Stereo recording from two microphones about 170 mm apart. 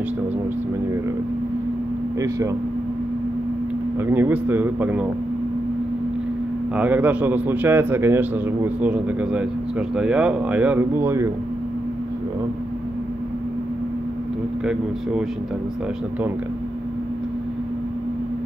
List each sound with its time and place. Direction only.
2.1 s speech: 20° right (ahead or behind)
4.0 s a man's voice: 10° right (ahead or behind)
6.8 s a man's voice: 10° right (ahead or behind)